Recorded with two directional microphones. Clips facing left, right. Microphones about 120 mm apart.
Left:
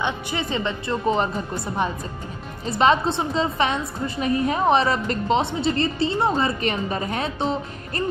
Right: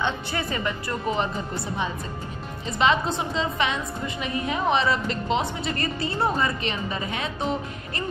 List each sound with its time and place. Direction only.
0.0 s a woman's voice: 20° left (ahead or behind); by 1.3 s 35° left (ahead or behind)
2.6 s a woman's voice: 40° left (ahead or behind)
5.4 s a woman's voice: 30° left (ahead or behind)
6.6 s a woman's voice: 45° left (ahead or behind)
7.3 s a woman's voice: 30° left (ahead or behind)